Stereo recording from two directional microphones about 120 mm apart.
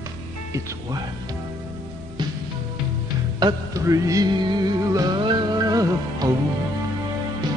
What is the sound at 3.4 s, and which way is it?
Music, 30° right (ahead or behind).